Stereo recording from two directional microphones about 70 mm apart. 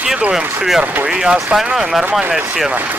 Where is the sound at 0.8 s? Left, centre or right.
Centre.